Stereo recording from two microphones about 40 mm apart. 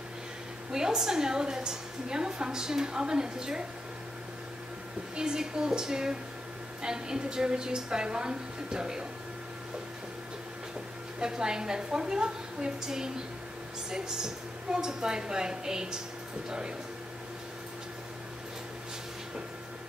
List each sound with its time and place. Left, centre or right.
0.7 s a woman's voice: centre
5.1 s a woman's voice: centre
11.1 s a woman's voice: centre